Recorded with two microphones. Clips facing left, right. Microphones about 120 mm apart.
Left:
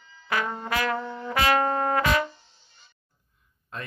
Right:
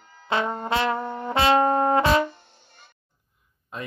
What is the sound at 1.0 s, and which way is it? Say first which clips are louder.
Brass instrument: right 4 dB; 55° right (ahead or behind).